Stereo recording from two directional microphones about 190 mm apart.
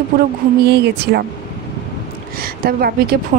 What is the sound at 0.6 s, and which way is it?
Speech, 60° right (ahead or behind).